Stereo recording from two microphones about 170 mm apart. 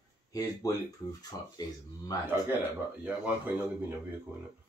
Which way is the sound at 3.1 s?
10° right (ahead or behind).